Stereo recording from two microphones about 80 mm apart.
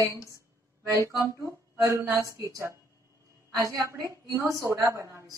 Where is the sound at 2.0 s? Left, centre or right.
Right.